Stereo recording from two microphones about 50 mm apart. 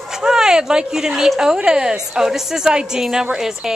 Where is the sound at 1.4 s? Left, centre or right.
Centre.